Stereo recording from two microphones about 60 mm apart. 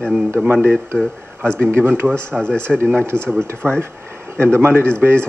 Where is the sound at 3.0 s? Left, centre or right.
Right.